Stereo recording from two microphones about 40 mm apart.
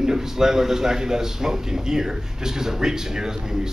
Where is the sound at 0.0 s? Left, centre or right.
Centre.